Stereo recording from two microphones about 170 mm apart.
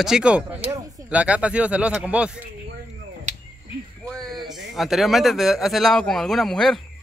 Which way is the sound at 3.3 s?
45° right (ahead or behind).